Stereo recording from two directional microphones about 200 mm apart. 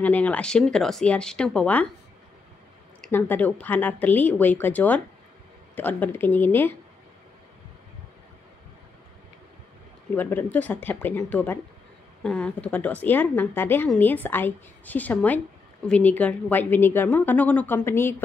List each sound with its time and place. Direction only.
0.0 s speech: 5° left (ahead or behind)
3.0 s a woman's voice: 10° left (ahead or behind)
10.1 s a woman's voice: 10° left (ahead or behind)